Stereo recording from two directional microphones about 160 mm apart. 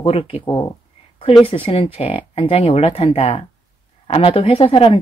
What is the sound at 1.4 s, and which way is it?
Speech, 35° left (ahead or behind).